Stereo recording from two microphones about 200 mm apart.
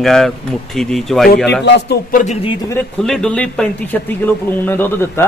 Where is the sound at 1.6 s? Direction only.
55° left (ahead or behind).